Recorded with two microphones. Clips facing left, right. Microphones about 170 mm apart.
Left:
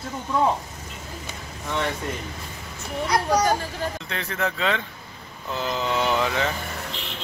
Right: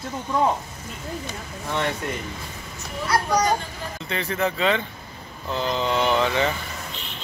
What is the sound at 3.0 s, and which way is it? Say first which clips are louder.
Speech: even; 20° left (ahead or behind).